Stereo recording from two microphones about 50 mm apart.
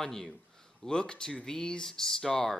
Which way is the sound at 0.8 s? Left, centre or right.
Centre.